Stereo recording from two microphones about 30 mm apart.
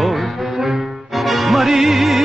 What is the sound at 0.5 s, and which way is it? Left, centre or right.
Music, centre.